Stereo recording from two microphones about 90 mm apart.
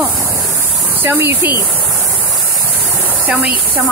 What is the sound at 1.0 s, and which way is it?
Speech, 25° right (ahead or behind).